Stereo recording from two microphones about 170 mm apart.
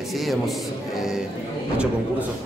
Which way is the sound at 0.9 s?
5° right (ahead or behind).